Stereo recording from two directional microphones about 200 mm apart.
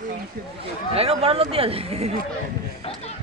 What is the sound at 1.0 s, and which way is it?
Speech, 30° right (ahead or behind).